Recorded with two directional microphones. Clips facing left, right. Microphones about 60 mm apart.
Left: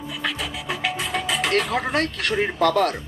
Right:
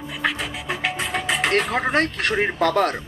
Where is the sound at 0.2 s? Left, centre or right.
Right.